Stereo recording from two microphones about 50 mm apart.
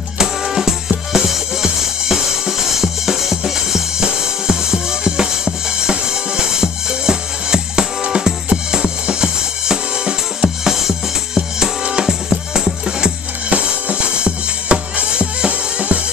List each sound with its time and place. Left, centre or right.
0.2 s music: centre
11.3 s music: centre